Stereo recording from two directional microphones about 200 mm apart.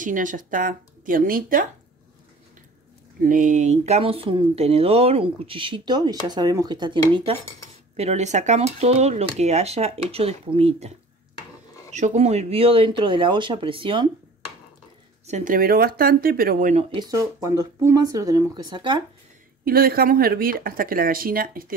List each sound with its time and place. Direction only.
0.0 s speech: 40° right (ahead or behind)
3.2 s speech: 40° right (ahead or behind)
11.9 s speech: 35° right (ahead or behind)
15.2 s speech: 40° right (ahead or behind)
16.9 s speech: 20° right (ahead or behind)
19.6 s speech: 50° right (ahead or behind)